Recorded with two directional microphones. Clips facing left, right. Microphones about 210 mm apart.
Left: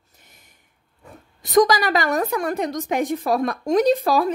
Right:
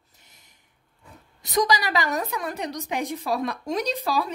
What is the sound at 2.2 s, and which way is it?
A woman's voice, 50° left (ahead or behind).